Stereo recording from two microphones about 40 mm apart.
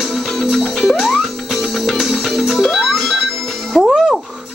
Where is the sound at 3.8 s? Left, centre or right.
Centre.